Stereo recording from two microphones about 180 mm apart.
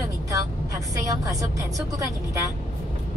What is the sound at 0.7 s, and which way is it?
A woman's voice, 20° right (ahead or behind).